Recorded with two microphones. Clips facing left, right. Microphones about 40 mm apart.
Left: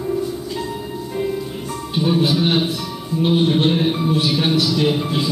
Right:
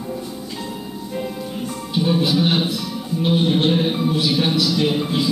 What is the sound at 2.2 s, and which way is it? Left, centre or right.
Music, left.